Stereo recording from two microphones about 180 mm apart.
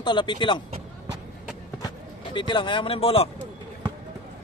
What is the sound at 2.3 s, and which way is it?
Speech, 25° left (ahead or behind).